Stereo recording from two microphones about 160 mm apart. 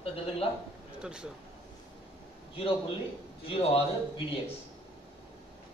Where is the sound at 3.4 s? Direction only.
35° left (ahead or behind).